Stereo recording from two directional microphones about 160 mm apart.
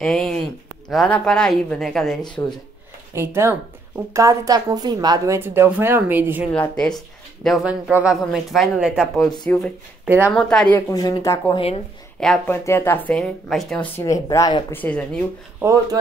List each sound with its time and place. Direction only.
0.0 s speech: 5° left (ahead or behind)
2.4 s speech: 15° left (ahead or behind)
3.2 s a woman's voice: 15° right (ahead or behind)
6.5 s speech: 5° left (ahead or behind)
7.4 s speech: 5° right (ahead or behind)
10.0 s speech: 15° right (ahead or behind)
10.3 s speech: 5° left (ahead or behind)
10.9 s speech: 25° left (ahead or behind)
11.5 s speech: 35° left (ahead or behind)
12.2 s speech: 5° left (ahead or behind)
12.6 s speech: 15° left (ahead or behind)
14.2 s speech: 25° left (ahead or behind)
14.8 s speech: 10° left (ahead or behind)
15.6 s speech: 20° right (ahead or behind)